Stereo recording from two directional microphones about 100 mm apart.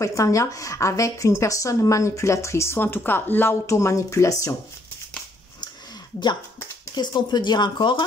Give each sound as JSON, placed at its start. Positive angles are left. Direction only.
{"t": 0.0, "sound": "a woman's voice", "side_deg": 35}
{"t": 7.0, "sound": "speech", "side_deg": 45}